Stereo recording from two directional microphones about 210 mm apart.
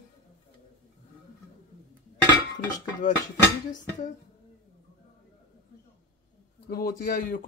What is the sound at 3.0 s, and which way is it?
Speech, 40° left (ahead or behind).